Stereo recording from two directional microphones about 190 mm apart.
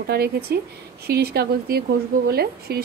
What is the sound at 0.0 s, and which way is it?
Speech, 55° right (ahead or behind).